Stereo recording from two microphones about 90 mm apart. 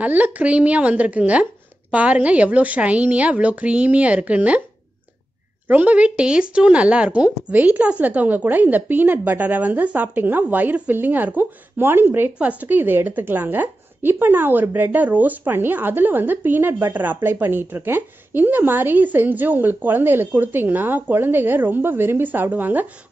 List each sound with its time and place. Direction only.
0.0 s speech: 20° right (ahead or behind)
5.7 s a woman's voice: 20° right (ahead or behind)